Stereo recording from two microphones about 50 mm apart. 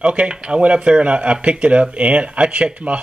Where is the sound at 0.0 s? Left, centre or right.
Right.